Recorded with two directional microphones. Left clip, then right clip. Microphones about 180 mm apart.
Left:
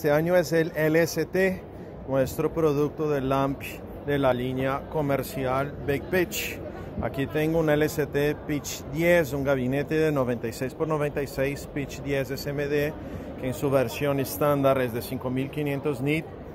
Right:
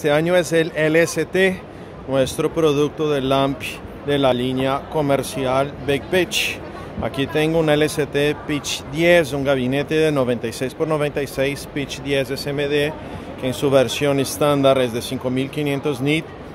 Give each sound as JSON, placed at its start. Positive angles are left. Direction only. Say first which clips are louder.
{"t": 0.0, "sound": "a man's voice", "louder": "right 5 dB", "side_deg": -10}